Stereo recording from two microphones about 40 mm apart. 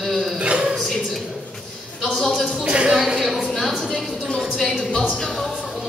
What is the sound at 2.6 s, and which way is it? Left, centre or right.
Speech, right.